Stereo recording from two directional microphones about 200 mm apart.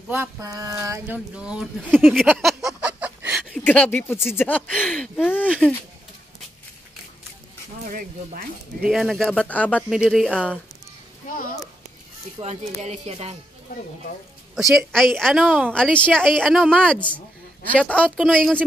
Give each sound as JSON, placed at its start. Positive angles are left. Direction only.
{"t": 0.1, "sound": "speech", "side_deg": -15}
{"t": 3.6, "sound": "speech", "side_deg": 10}
{"t": 7.8, "sound": "speech", "side_deg": -40}
{"t": 8.8, "sound": "a woman's voice", "side_deg": 0}
{"t": 11.2, "sound": "a sound", "side_deg": 45}
{"t": 12.4, "sound": "speech", "side_deg": -35}
{"t": 14.9, "sound": "a woman's voice", "side_deg": 0}